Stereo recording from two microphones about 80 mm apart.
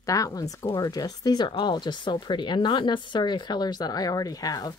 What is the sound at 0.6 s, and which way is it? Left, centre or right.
Speech, left.